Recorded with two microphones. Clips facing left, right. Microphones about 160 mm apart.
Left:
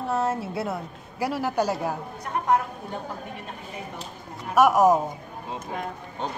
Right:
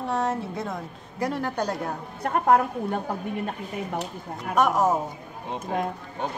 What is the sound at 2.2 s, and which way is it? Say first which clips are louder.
Speech: right 4 dB; 55° right (ahead or behind).